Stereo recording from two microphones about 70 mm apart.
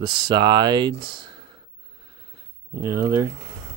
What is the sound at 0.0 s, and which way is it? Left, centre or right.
Speech, right.